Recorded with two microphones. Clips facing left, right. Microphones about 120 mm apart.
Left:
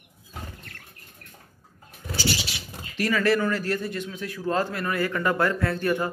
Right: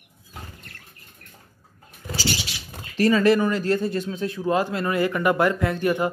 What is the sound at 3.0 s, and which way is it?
Speech, 20° right (ahead or behind).